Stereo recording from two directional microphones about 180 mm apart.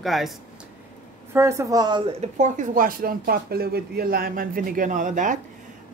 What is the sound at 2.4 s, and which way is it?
Speech, 50° right (ahead or behind).